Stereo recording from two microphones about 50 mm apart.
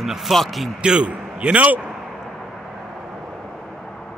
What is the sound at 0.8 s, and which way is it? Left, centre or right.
A man's voice, centre.